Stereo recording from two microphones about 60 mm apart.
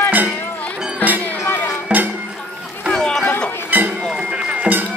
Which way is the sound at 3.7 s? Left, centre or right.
Right.